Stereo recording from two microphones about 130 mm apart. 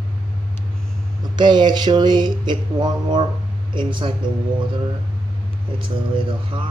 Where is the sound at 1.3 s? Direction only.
35° right (ahead or behind).